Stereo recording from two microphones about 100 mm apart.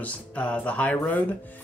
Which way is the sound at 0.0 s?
15° left (ahead or behind).